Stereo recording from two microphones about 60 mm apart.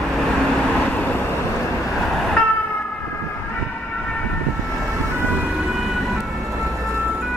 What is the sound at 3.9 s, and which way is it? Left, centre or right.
Siren, centre.